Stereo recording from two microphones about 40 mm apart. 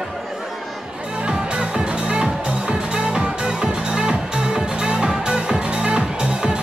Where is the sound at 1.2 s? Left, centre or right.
Right.